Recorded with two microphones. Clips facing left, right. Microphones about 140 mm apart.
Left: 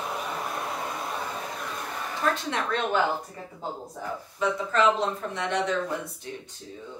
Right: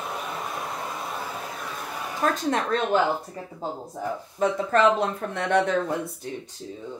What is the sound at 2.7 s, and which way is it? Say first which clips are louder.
Speech: right 1 dB; 40° right (ahead or behind).